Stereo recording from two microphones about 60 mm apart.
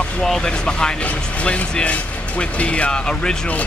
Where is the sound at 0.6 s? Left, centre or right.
Centre.